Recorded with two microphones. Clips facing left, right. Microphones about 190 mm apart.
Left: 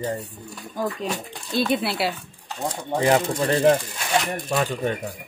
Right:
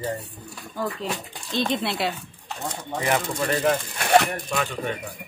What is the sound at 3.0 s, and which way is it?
Speech, 30° left (ahead or behind).